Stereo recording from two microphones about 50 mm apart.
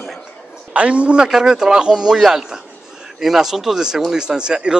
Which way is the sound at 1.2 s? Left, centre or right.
Centre.